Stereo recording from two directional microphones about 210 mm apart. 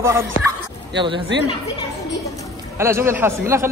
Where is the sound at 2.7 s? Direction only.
10° right (ahead or behind).